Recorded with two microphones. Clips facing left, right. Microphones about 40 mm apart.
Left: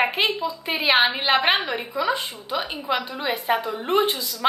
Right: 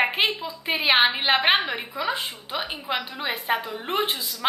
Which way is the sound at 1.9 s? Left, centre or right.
Right.